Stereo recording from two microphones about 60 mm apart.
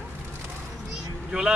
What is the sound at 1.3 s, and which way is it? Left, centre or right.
Speech, centre.